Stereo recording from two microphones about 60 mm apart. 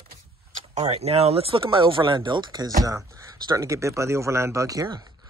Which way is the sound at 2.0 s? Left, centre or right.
Right.